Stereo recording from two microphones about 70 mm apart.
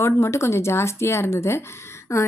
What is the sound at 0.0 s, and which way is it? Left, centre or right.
A woman's voice, left.